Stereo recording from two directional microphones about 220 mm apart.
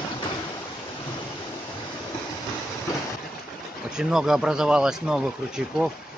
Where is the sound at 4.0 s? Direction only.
Centre (ahead or behind).